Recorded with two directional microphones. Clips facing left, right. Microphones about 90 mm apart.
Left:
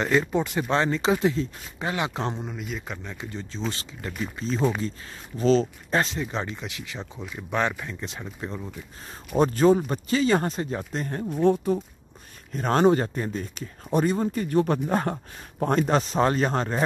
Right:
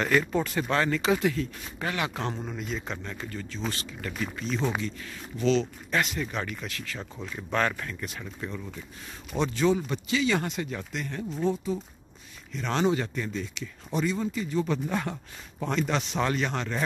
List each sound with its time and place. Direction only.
0.0 s speech: 20° left (ahead or behind)
2.4 s speech: 5° left (ahead or behind)
7.2 s speech: 5° left (ahead or behind); by 8.6 s 25° left (ahead or behind)
9.4 s speech: 45° left (ahead or behind)
11.2 s speech: 60° left (ahead or behind)
12.5 s speech: 45° left (ahead or behind)